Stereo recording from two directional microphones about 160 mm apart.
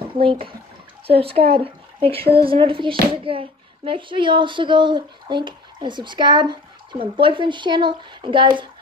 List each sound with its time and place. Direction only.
0.2 s speech: 35° right (ahead or behind)